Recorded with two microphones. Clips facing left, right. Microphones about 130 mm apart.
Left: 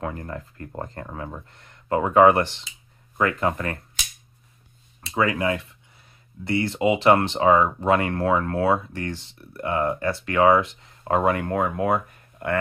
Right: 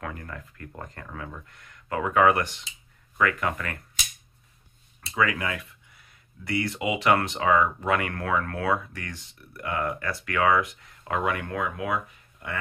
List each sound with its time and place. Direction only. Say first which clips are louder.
0.0 s speech: left 6 dB; 30° left (ahead or behind)
5.1 s speech: left 4 dB; 30° left (ahead or behind); by 12.5 s 55° left (ahead or behind)